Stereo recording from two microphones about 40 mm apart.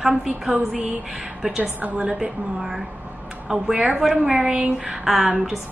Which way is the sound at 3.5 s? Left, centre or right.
Centre.